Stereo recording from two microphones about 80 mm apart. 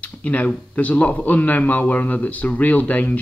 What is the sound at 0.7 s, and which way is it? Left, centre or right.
Speech, centre.